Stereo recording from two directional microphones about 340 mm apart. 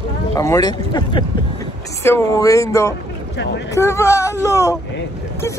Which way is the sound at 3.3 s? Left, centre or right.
Left.